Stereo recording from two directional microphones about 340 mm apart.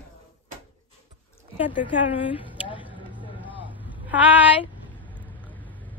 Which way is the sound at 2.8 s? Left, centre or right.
Centre.